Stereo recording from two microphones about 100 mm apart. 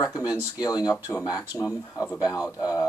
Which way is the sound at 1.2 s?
40° left (ahead or behind).